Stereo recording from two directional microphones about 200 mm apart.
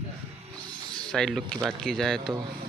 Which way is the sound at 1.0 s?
5° left (ahead or behind).